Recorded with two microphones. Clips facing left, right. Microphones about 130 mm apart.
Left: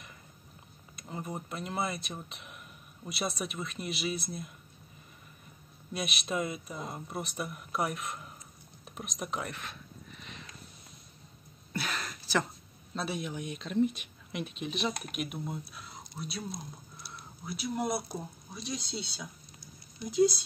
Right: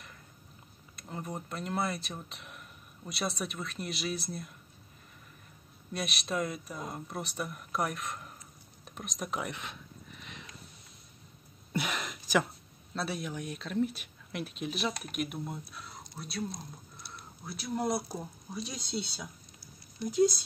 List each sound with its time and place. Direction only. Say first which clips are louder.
0.9 s speech: even; 5° left (ahead or behind)
5.9 s speech: even; centre (ahead or behind)
9.4 s speech: right 1 dB; 15° right (ahead or behind)
11.7 s a sound: right 2 dB; 15° right (ahead or behind)
12.9 s speech: even; centre (ahead or behind)
16.5 s speech: left 2 dB; 10° left (ahead or behind)
18.0 s speech: even; centre (ahead or behind)